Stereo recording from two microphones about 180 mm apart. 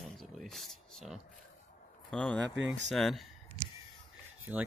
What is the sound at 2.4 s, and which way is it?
Speech, 80° right.